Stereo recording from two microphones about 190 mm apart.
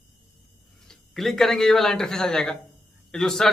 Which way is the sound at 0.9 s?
Centre (ahead or behind).